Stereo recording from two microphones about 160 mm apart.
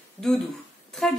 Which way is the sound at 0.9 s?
Centre (ahead or behind).